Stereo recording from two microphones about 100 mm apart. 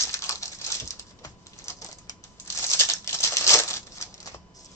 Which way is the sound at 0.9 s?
30° left (ahead or behind).